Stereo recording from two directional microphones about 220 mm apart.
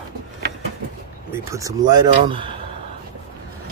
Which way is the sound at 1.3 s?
15° right (ahead or behind).